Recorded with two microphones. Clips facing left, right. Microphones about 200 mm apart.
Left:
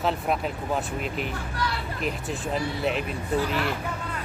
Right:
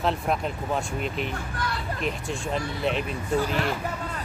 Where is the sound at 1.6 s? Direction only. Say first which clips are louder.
Left 2 dB; 50° right (ahead or behind).